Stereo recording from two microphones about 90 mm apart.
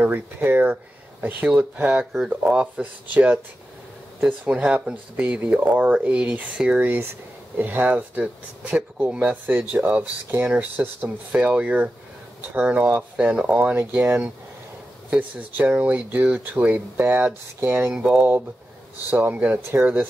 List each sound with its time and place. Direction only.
0.0 s speech: 20° right (ahead or behind)
17.9 s speech: 10° right (ahead or behind)